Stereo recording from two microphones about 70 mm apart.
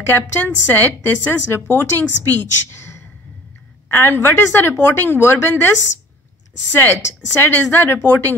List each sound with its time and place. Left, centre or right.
0.0 s speech: left
6.7 s speech: left